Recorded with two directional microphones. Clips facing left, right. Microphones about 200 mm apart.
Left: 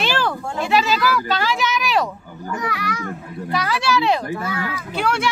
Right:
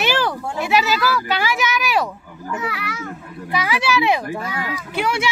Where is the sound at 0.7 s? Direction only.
10° right (ahead or behind).